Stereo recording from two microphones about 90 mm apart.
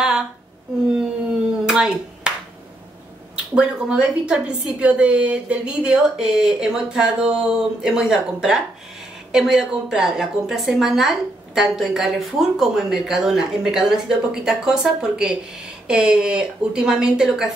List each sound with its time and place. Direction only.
0.0 s a sound: 5° right (ahead or behind)
1.7 s clapping: 10° right (ahead or behind)
3.5 s a woman's voice: 10° right (ahead or behind)